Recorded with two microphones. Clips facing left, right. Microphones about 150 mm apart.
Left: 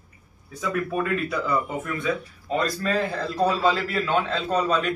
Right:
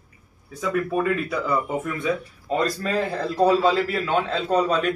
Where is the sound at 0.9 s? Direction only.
10° right (ahead or behind).